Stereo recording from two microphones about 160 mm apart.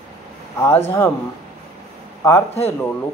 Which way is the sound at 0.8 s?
15° left (ahead or behind).